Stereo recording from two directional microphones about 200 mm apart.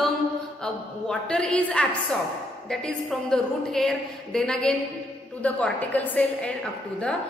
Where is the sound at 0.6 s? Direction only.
5° left (ahead or behind).